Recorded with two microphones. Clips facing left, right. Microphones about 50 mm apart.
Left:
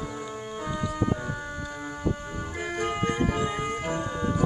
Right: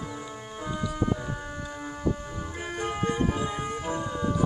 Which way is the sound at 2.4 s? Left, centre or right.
Left.